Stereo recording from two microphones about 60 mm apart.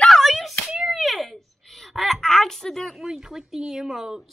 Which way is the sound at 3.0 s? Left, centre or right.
Centre.